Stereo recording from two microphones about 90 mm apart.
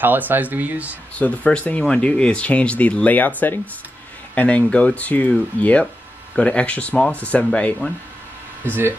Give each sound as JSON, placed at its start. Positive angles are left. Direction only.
{"t": 0.0, "sound": "speech", "side_deg": -20}
{"t": 1.1, "sound": "speech", "side_deg": 15}